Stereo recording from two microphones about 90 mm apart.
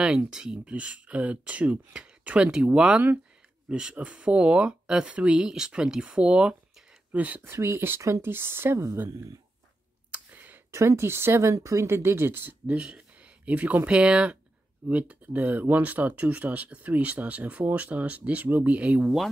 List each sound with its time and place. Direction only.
0.3 s speech: 5° right (ahead or behind); by 9.0 s 30° right (ahead or behind)
10.1 s clicking: 20° right (ahead or behind)
10.7 s speech: 30° right (ahead or behind); by 19.0 s 15° right (ahead or behind)